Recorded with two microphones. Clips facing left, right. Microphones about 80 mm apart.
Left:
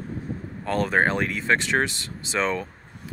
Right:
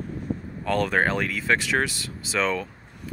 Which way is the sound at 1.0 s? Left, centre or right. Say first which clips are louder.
Left 1 dB; centre.